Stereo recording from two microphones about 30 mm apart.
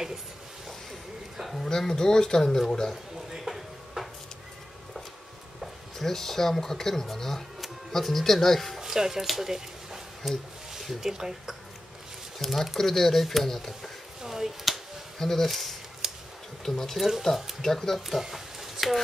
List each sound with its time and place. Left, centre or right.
1.7 s speech: centre
3.3 s music: centre
5.9 s speech: centre
8.7 s speech: centre
9.2 s speech: centre
12.4 s speech: centre
14.2 s a sound: centre
15.1 s speech: centre
16.0 s a sound: centre
16.6 s speech: centre
16.9 s speech: centre
17.6 s speech: centre
18.3 s a sound: centre